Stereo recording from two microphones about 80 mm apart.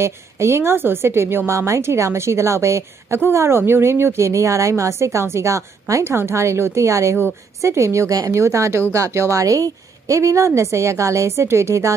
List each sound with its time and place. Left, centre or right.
0.0 s a woman's voice: right